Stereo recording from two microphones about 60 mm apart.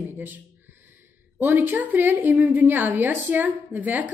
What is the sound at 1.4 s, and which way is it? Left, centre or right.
A woman's voice, right.